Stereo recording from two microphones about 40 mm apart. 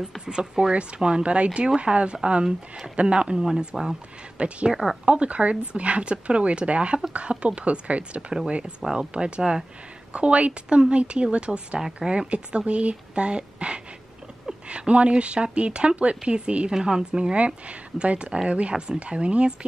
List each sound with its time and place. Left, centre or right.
0.2 s speech: right
3.4 s speech: centre
4.4 s speech: right